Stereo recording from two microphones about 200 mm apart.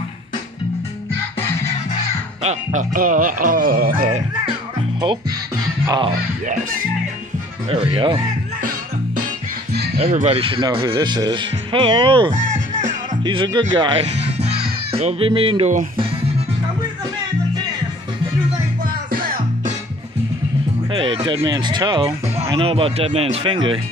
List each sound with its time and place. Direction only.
1.4 s music: 10° left (ahead or behind)
2.4 s speech: 40° right (ahead or behind)
5.9 s speech: 25° right (ahead or behind)
6.4 s speech: 40° right (ahead or behind)
7.7 s speech: 25° right (ahead or behind)
10.0 s speech: 40° right (ahead or behind)
12.4 s music: 40° right (ahead or behind)
13.2 s speech: 25° right (ahead or behind)
14.2 s music: 30° right (ahead or behind)
14.9 s speech: 30° right (ahead or behind)
19.0 s music: 45° right (ahead or behind)
20.9 s speech: 25° right (ahead or behind)